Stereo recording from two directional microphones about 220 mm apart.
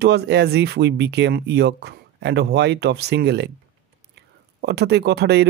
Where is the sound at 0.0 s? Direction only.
50° right (ahead or behind).